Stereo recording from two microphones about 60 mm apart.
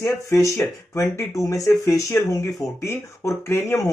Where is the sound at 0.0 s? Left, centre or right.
Left.